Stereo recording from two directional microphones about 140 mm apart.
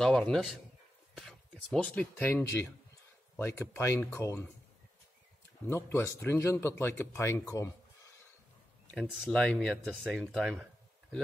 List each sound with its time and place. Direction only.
0.0 s a man's voice: 5° left (ahead or behind); by 4.5 s 20° left (ahead or behind)
5.7 s a man's voice: 20° left (ahead or behind)
8.9 s speech: 5° left (ahead or behind)